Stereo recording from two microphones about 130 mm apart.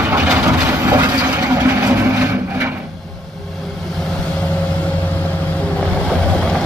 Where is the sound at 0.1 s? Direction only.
10° right (ahead or behind).